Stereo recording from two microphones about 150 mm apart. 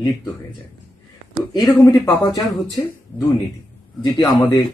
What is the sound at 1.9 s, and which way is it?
Speech, 20° left (ahead or behind).